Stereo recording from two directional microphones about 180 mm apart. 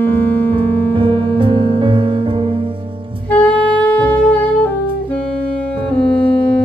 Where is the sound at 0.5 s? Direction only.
30° right (ahead or behind).